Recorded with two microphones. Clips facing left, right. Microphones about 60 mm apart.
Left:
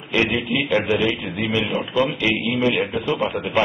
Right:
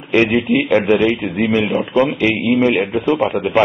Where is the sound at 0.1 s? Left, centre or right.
Right.